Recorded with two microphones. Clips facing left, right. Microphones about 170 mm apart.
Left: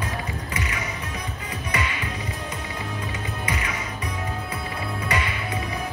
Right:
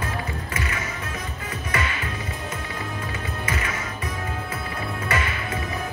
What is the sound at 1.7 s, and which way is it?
Music, 20° left (ahead or behind).